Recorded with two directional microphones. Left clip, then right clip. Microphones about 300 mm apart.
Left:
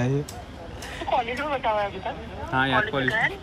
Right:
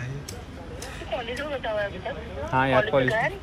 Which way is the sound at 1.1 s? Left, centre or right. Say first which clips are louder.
Left 5 dB; centre.